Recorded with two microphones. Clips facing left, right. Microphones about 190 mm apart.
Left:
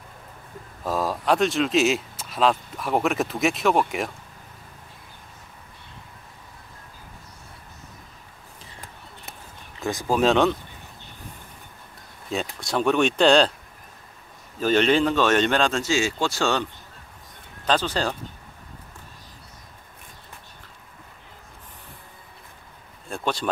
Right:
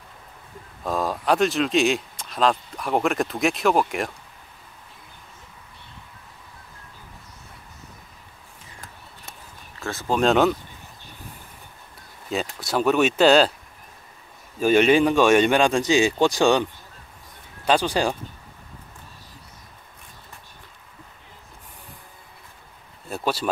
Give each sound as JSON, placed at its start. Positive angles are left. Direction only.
{"t": 0.8, "sound": "speech", "side_deg": 0}
{"t": 9.8, "sound": "speech", "side_deg": 15}
{"t": 10.1, "sound": "speech", "side_deg": 0}
{"t": 12.3, "sound": "speech", "side_deg": 0}
{"t": 14.6, "sound": "speech", "side_deg": -10}
{"t": 17.6, "sound": "speech", "side_deg": -10}
{"t": 23.0, "sound": "a sound", "side_deg": -5}